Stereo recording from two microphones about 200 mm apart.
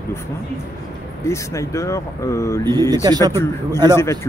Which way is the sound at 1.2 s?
15° left (ahead or behind).